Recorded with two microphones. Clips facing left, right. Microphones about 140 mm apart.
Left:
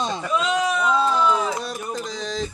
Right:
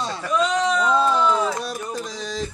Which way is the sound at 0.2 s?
5° left (ahead or behind).